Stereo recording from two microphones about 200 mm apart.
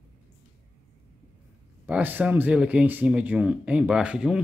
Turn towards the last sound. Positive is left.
turn(degrees=-5)  # may be behind; listen again after turning